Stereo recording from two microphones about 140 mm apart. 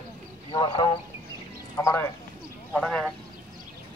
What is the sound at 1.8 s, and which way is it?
Speech, 20° left (ahead or behind).